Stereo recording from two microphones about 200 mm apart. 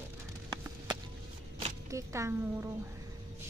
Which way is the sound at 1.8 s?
15° right (ahead or behind).